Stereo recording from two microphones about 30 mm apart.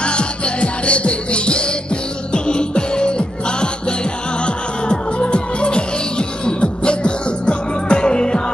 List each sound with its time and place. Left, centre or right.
0.0 s music: left